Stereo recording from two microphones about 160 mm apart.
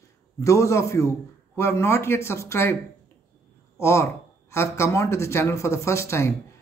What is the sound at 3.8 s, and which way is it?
Speech, 15° left (ahead or behind).